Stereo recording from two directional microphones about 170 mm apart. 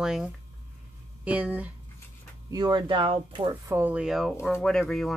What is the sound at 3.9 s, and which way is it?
Speech, centre (ahead or behind).